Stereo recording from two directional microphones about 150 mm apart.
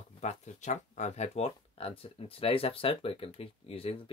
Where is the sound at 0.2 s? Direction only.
50° left (ahead or behind).